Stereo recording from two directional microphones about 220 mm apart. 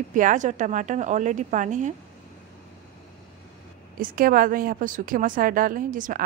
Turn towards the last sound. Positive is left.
turn(degrees=-35)  # may be behind; listen again after turning